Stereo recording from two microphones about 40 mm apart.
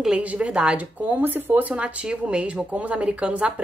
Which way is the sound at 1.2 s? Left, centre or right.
Right.